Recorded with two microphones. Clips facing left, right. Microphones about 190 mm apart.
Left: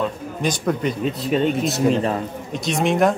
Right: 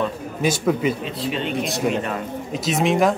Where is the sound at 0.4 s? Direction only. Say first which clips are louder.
Right 2 dB; 5° right (ahead or behind).